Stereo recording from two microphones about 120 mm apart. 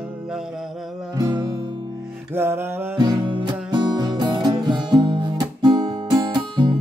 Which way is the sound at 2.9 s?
35° right (ahead or behind).